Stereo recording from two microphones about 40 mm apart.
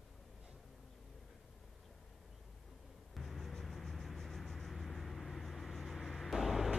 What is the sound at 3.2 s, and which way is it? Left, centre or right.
Vehicle, centre.